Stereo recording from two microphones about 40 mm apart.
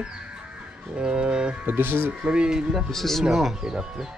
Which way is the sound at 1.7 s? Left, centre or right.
Right.